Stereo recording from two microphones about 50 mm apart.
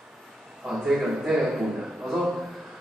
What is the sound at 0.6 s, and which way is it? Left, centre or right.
Speech, centre.